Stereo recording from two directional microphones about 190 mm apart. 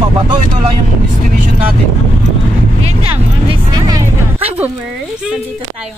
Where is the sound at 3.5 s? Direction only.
25° right (ahead or behind).